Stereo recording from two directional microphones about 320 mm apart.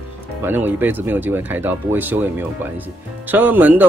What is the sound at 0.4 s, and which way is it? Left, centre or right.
Speech, centre.